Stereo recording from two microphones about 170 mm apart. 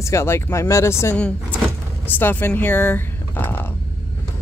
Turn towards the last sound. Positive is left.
turn(degrees=10)  # may be behind; listen again after turning